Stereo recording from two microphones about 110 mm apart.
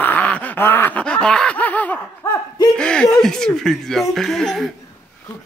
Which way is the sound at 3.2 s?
5° left (ahead or behind).